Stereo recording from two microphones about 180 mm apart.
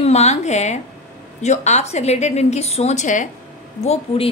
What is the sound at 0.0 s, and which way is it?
A woman's voice, 40° left (ahead or behind).